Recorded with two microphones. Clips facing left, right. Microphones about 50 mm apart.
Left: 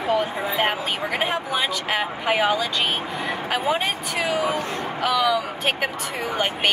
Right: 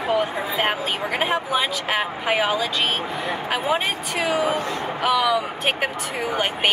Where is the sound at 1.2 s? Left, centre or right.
Centre.